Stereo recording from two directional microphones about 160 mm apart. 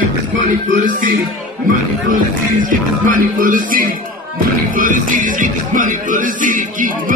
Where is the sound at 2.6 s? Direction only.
60° right (ahead or behind).